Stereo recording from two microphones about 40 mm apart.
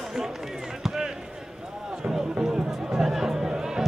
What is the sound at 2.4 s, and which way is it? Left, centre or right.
Music, centre.